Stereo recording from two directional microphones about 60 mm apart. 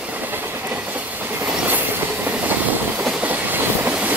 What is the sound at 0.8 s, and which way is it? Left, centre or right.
Train, right.